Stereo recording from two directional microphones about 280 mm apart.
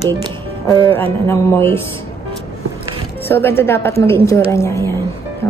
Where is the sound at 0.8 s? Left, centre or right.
Centre.